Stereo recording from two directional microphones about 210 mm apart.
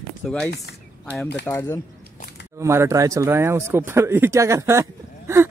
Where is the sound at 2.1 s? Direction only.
50° left (ahead or behind).